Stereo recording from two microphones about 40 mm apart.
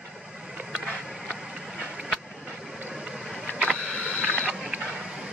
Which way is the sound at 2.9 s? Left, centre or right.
Centre.